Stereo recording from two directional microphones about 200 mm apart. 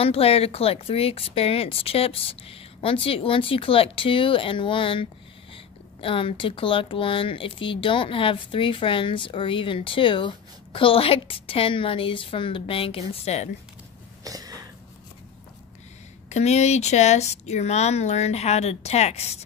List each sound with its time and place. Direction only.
0.0 s speech: 30° left (ahead or behind)
14.2 s a sound: 20° right (ahead or behind)
16.3 s speech: 35° left (ahead or behind)